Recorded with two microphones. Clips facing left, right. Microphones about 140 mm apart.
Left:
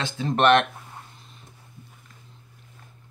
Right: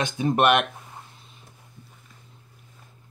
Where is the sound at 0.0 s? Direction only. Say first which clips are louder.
Right 1 dB; 15° right (ahead or behind).